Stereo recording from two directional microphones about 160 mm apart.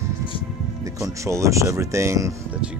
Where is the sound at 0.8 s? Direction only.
20° right (ahead or behind).